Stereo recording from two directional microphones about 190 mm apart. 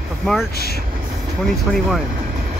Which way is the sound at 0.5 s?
55° left (ahead or behind).